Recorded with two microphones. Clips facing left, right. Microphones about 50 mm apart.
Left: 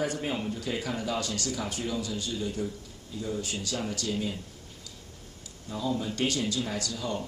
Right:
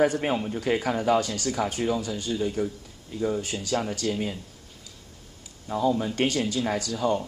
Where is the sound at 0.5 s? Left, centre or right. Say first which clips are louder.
Right 7 dB; right.